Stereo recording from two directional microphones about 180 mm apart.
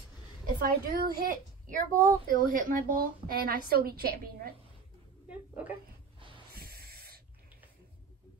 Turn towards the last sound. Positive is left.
turn(degrees=-60)  # may be behind; listen again after turning